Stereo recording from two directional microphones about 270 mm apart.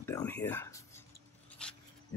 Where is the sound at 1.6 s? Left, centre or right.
Centre.